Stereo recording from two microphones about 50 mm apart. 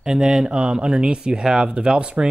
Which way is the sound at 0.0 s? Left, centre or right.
Centre.